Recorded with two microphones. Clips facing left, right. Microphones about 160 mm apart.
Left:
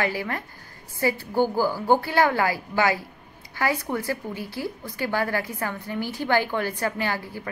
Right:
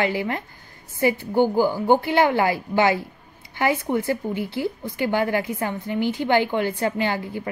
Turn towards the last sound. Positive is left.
turn(degrees=-25)  # may be behind; listen again after turning